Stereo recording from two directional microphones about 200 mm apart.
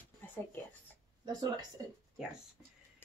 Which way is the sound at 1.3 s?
20° right (ahead or behind).